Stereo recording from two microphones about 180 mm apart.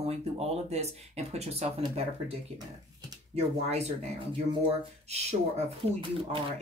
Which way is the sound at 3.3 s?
35° right (ahead or behind).